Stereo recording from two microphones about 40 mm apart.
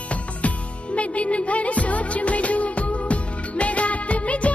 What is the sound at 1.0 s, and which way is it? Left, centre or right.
Music, left.